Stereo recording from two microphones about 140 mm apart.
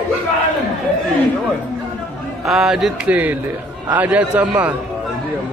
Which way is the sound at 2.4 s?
Centre (ahead or behind).